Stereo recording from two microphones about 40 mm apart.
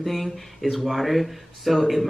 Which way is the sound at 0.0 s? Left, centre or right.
Centre.